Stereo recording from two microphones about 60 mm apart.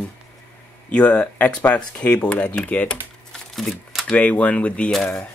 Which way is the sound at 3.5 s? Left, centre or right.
Centre.